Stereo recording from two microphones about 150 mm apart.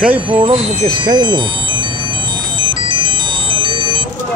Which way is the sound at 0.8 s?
25° right (ahead or behind).